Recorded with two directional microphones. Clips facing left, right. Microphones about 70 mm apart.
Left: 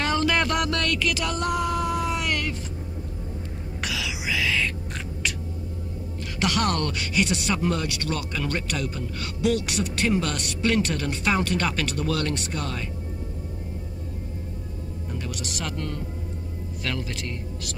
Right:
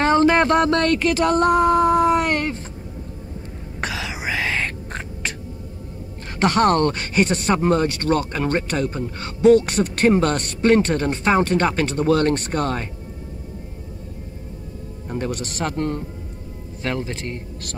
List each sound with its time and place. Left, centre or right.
0.0 s a sound: right
3.8 s music: right
6.4 s speech: right
15.0 s a man's voice: right